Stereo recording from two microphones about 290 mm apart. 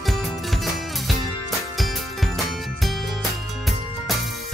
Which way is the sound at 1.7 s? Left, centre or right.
Centre.